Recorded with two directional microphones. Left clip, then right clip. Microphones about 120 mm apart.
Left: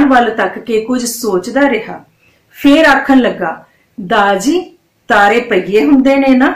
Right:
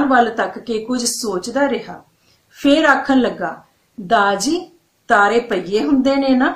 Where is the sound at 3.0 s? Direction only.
25° right (ahead or behind).